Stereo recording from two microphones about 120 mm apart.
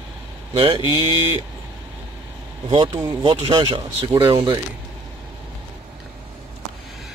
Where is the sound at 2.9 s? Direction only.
35° right (ahead or behind).